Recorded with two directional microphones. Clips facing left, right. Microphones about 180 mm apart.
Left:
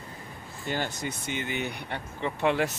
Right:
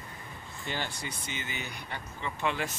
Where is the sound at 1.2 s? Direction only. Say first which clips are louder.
Left 9 dB; 60° left (ahead or behind).